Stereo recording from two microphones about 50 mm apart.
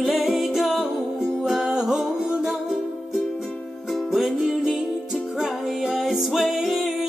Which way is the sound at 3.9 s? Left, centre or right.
Centre.